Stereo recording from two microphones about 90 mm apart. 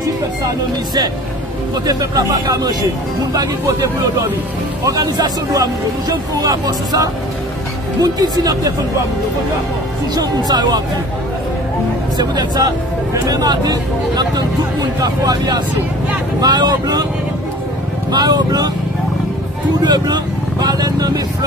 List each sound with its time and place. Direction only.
1.9 s speech: 45° right (ahead or behind)
10.1 s speech: 50° right (ahead or behind)
12.2 s speech: 50° right (ahead or behind)
18.1 s speech: 50° right (ahead or behind)
19.8 s speech: 50° right (ahead or behind)